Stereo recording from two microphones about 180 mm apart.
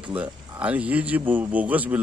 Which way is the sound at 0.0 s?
10° right (ahead or behind).